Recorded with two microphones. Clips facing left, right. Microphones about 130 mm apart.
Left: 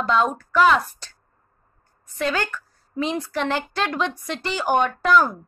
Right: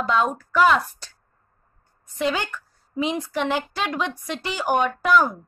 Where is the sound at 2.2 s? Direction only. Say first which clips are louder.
Even; 20° right (ahead or behind).